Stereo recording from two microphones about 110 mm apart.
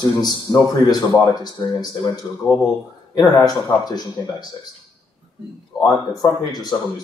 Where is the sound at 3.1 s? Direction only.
35° left (ahead or behind).